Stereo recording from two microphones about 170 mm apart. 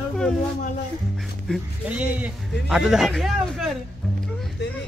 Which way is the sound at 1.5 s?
10° right (ahead or behind).